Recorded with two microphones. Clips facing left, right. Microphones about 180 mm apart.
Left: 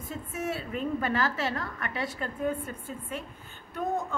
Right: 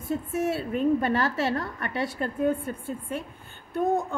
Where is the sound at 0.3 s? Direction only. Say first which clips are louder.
Right 4 dB; 30° right (ahead or behind).